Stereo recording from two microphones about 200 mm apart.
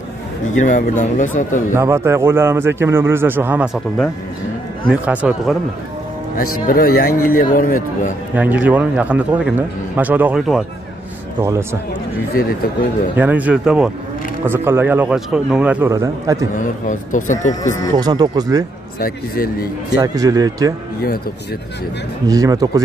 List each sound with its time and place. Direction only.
0.6 s speech: 40° left (ahead or behind)
1.8 s a man's voice: 15° right (ahead or behind)
6.3 s speech: 45° left (ahead or behind)
8.4 s a man's voice: 10° right (ahead or behind)
11.4 s a man's voice: 15° right (ahead or behind)
13.1 s a man's voice: 10° right (ahead or behind)
16.5 s speech: 40° left (ahead or behind)
17.9 s speech: 20° right (ahead or behind)
18.9 s speech: 45° left (ahead or behind)
20.0 s a man's voice: 20° right (ahead or behind)
22.3 s a man's voice: 20° right (ahead or behind)